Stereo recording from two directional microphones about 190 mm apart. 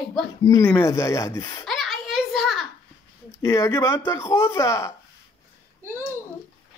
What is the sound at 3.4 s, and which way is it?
Speech, 15° left (ahead or behind).